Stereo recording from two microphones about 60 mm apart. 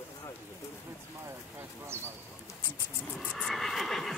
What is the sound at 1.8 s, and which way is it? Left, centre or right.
Speech, right.